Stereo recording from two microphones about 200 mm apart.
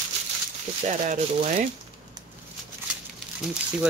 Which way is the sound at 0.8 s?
35° right (ahead or behind).